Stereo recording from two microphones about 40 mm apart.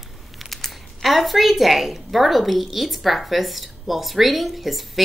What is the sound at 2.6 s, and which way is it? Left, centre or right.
Speech, centre.